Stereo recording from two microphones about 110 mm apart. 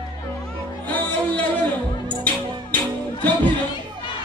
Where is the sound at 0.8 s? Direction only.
15° left (ahead or behind).